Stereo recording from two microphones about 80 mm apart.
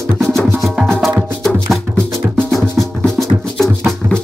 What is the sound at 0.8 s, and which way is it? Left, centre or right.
Music, centre.